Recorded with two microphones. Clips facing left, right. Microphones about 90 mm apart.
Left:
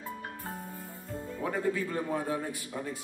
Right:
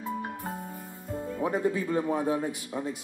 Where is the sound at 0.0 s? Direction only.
20° right (ahead or behind).